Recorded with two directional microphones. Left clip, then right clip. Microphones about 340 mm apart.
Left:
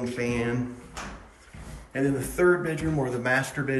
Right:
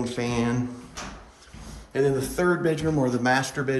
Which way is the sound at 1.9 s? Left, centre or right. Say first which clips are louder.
Right 4 dB; centre.